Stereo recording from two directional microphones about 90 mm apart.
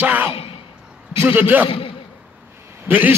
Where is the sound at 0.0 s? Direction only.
20° right (ahead or behind).